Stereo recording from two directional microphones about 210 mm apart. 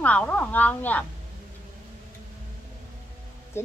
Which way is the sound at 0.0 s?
5° left (ahead or behind).